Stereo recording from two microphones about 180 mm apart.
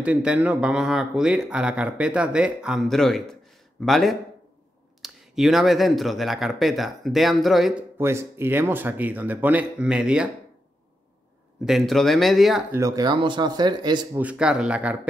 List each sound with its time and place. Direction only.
0.0 s speech: 5° right (ahead or behind)
8.0 s speech: 15° right (ahead or behind)
11.6 s speech: centre (ahead or behind)
12.7 s speech: 20° right (ahead or behind)
14.1 s speech: 5° right (ahead or behind)